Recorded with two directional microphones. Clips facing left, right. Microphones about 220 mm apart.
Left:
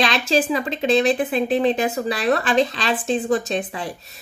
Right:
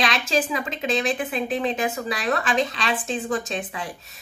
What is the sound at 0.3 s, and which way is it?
Speech, 35° left (ahead or behind).